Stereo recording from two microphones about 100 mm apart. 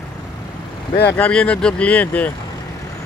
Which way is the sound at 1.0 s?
15° left (ahead or behind).